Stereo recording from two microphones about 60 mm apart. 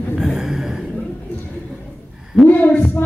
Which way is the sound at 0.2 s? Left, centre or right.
Centre.